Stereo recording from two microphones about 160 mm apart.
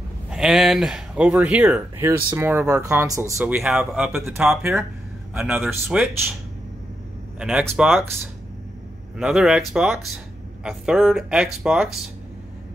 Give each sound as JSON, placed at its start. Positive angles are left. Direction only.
{"t": 0.3, "sound": "speech", "side_deg": -5}
{"t": 3.5, "sound": "speech", "side_deg": -5}
{"t": 7.3, "sound": "speech", "side_deg": -5}
{"t": 9.2, "sound": "speech", "side_deg": -5}